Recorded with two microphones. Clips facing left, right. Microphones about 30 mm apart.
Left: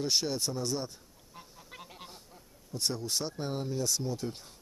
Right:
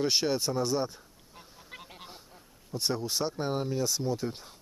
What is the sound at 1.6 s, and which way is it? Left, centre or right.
Goose, centre.